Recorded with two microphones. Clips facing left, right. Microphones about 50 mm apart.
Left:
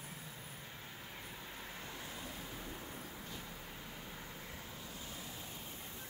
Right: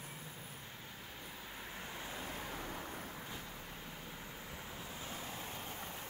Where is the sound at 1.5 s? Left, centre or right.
Centre.